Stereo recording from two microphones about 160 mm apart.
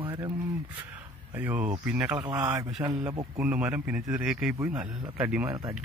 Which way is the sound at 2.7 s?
10° right (ahead or behind).